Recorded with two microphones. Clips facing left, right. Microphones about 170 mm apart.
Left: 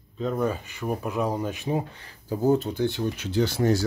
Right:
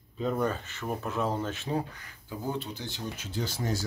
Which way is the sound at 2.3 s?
40° left (ahead or behind).